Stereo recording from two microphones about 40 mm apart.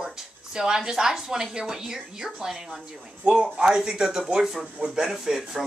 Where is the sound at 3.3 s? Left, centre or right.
Right.